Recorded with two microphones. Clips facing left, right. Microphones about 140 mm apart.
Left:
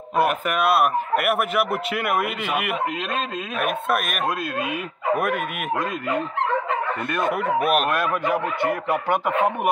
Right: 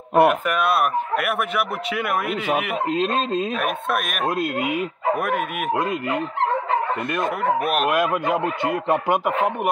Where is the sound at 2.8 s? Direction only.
30° right (ahead or behind).